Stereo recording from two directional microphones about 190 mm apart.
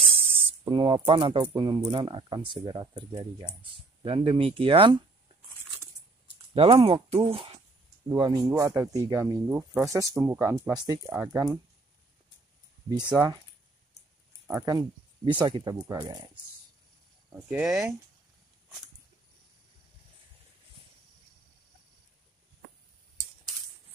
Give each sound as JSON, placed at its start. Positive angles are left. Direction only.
{"t": 0.0, "sound": "a sound", "side_deg": -30}
{"t": 1.6, "sound": "speech", "side_deg": -25}
{"t": 6.5, "sound": "speech", "side_deg": -30}
{"t": 12.9, "sound": "speech", "side_deg": -20}
{"t": 14.6, "sound": "speech", "side_deg": -20}
{"t": 17.5, "sound": "speech", "side_deg": -5}